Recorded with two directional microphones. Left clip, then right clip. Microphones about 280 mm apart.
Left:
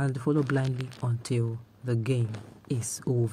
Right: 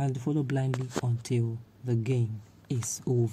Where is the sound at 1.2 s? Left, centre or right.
Centre.